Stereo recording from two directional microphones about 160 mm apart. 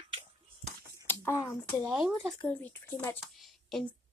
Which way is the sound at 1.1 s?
15° left (ahead or behind).